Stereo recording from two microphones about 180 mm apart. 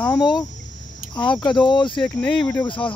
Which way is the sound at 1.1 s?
25° left (ahead or behind).